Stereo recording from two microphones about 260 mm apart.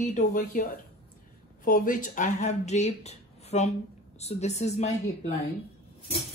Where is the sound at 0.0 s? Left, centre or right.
Left.